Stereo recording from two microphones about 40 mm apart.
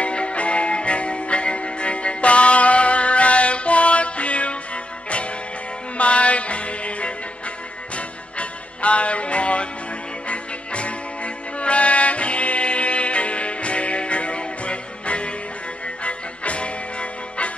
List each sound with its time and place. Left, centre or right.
0.0 s music: left
5.9 s music: left